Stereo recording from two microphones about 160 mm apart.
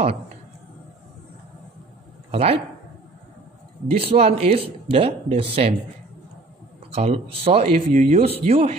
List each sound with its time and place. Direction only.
2.3 s speech: 40° right (ahead or behind)
3.9 s speech: 40° right (ahead or behind)
6.9 s speech: 40° right (ahead or behind)